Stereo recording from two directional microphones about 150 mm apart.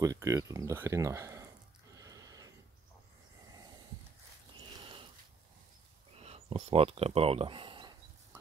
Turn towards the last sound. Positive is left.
turn(degrees=-35)  # may be behind; listen again after turning